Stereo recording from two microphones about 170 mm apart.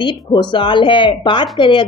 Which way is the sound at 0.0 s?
30° left (ahead or behind).